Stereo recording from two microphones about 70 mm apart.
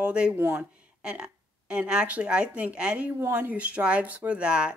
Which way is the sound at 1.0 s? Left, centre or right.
Centre.